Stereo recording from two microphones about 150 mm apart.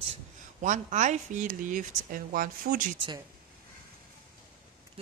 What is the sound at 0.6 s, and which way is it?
Speech, 55° right (ahead or behind).